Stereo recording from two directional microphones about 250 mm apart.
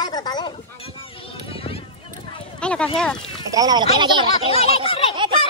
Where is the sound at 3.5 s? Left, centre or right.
Centre.